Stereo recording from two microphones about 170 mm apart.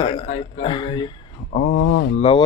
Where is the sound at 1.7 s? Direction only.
80° left.